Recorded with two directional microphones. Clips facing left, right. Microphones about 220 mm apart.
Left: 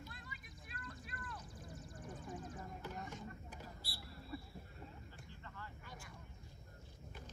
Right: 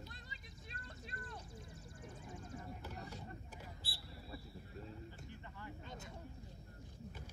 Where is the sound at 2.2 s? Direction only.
25° right (ahead or behind).